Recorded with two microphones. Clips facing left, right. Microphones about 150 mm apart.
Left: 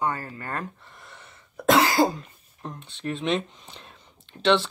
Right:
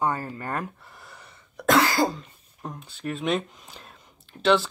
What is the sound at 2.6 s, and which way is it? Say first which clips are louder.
Speech: even; centre (ahead or behind).